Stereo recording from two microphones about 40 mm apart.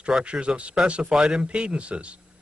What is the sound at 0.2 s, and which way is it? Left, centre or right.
Speech, right.